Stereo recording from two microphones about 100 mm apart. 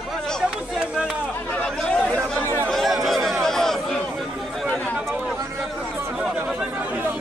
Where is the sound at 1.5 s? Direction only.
10° left (ahead or behind).